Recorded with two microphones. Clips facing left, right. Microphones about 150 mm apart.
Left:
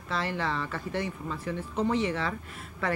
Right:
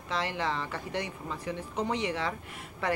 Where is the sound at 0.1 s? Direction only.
15° right (ahead or behind).